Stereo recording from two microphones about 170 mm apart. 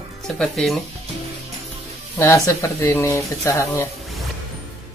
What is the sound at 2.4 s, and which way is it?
Speech, 15° left (ahead or behind).